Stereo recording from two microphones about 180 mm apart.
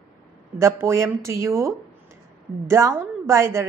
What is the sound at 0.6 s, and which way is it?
A woman's voice, 15° right (ahead or behind).